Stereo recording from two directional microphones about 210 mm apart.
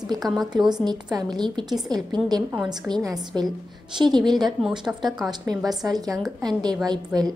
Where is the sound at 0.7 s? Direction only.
20° right (ahead or behind).